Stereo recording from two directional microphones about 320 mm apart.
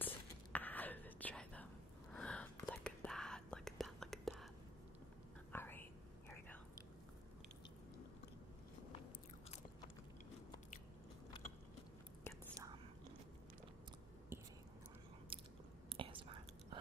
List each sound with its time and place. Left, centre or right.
0.0 s whispering: centre
5.5 s whispering: centre
15.3 s biting: centre
15.9 s whispering: centre